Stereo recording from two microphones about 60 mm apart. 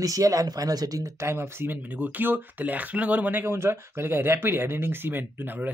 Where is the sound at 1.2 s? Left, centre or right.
Right.